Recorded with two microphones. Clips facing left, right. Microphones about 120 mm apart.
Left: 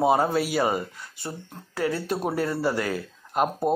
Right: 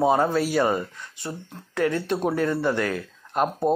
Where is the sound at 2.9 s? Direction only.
5° left (ahead or behind).